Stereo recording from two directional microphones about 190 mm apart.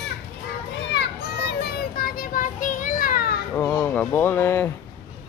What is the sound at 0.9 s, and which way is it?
Children playing, 60° left (ahead or behind).